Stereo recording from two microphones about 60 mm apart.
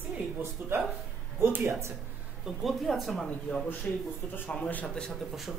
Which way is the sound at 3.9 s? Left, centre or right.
Left.